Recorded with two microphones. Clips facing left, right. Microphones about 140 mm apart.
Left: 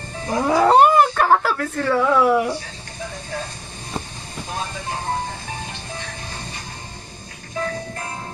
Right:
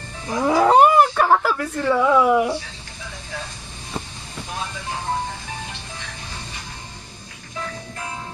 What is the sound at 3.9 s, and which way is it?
Vehicle, 25° left (ahead or behind).